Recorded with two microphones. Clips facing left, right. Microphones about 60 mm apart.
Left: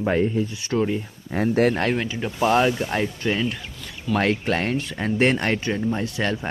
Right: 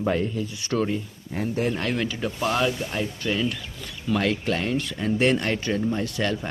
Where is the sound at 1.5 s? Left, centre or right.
Left.